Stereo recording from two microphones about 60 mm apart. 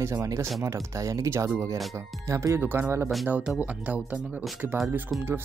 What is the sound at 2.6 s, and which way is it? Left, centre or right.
Speech, right.